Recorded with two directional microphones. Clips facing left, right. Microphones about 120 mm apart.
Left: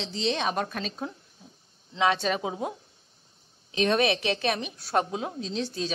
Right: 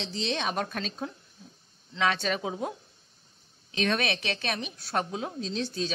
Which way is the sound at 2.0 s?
30° left (ahead or behind).